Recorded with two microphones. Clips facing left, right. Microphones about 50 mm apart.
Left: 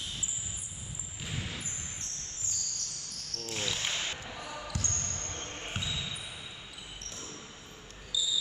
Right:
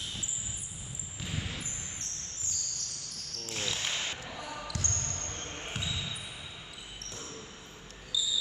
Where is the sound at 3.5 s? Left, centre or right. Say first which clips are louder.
Even; centre.